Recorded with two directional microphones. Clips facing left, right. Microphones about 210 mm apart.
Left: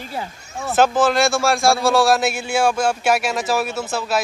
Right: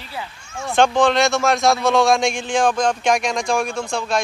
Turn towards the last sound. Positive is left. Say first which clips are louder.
# even
turn(degrees=5)  # may be behind; listen again after turning